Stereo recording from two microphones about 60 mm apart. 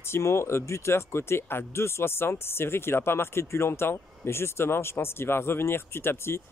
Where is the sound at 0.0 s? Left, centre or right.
Left.